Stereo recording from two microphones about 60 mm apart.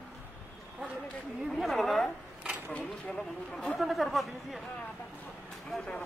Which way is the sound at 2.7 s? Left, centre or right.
Left.